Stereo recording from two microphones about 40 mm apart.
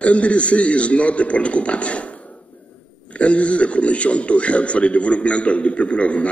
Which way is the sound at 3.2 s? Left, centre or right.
Left.